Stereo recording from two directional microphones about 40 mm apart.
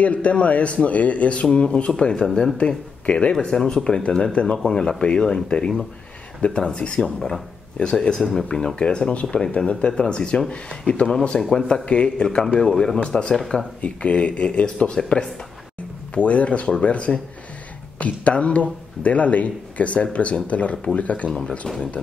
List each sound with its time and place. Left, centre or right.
0.0 s speech: left
3.1 s speech: left
3.3 s speech: centre
8.2 s speech: centre
8.5 s speech: centre
12.4 s speech: centre
13.7 s speech: left
21.4 s speech: centre